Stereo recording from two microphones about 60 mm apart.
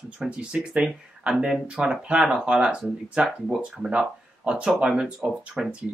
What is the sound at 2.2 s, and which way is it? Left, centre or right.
Speech, centre.